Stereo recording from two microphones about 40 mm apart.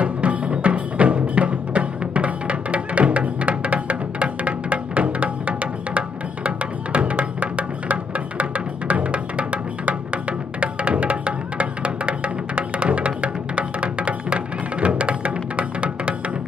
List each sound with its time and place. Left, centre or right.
0.0 s music: right